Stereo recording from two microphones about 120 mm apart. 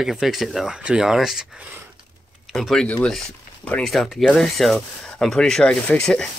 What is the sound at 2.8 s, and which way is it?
Speech, 10° left (ahead or behind).